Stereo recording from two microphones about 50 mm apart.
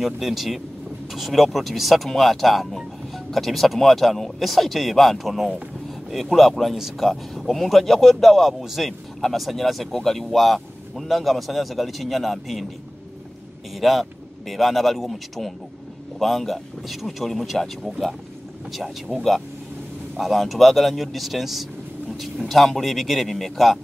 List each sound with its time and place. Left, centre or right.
0.0 s speech: centre
5.9 s a sound: centre
6.3 s speech: centre
13.7 s speech: centre
20.2 s speech: centre